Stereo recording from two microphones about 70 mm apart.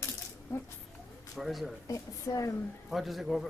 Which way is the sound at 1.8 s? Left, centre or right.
Left.